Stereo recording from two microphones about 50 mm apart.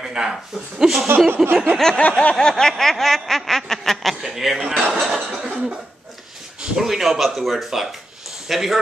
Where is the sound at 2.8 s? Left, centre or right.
Centre.